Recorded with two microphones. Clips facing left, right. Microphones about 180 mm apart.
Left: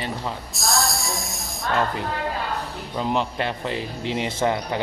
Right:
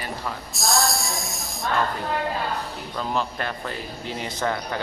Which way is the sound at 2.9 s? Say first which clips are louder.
Left 3 dB; 20° left (ahead or behind).